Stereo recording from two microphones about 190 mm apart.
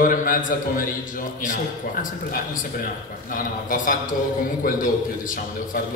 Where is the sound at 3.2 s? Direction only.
45° left (ahead or behind).